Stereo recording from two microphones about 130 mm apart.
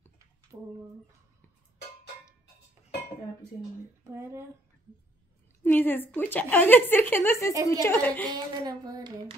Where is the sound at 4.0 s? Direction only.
20° right (ahead or behind).